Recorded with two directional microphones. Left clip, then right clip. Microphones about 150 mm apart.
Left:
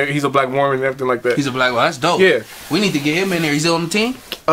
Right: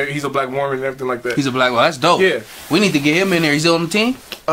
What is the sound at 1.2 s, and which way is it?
Speech, 25° right (ahead or behind).